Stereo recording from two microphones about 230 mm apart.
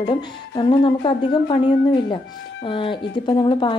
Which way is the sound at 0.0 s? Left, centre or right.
Left.